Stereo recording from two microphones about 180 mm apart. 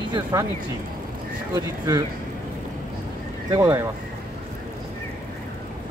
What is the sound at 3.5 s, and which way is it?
Speech, 15° right (ahead or behind).